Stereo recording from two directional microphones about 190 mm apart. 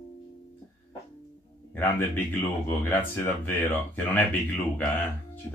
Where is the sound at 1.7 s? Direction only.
10° left (ahead or behind).